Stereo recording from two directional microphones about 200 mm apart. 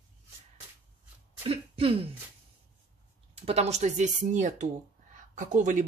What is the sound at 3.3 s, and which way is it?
Speech, 30° right (ahead or behind).